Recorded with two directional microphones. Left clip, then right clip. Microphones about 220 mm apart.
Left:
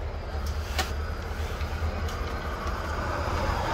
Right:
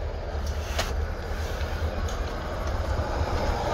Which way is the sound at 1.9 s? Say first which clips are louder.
Right 1 dB; 25° left (ahead or behind).